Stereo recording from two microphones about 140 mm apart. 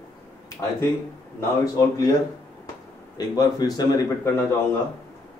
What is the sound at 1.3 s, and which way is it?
Speech, 25° left (ahead or behind).